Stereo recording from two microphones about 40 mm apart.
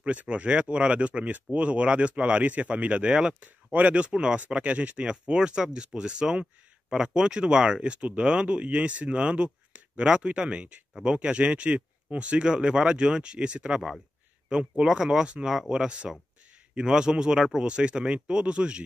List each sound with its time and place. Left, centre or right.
0.3 s speech: right
3.3 s speech: right
5.0 s speech: right
12.4 s speech: right